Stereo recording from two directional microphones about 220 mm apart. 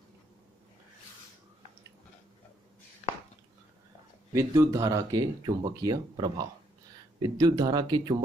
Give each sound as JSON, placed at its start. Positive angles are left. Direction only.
{"t": 4.3, "sound": "speech", "side_deg": -15}